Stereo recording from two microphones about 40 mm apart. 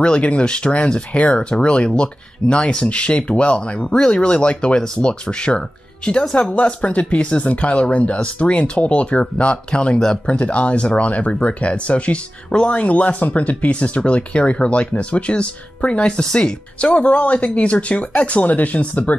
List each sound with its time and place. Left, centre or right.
0.0 s speech: left
6.5 s speech: left
12.8 s speech: left; by 16.5 s centre
16.8 s speech: left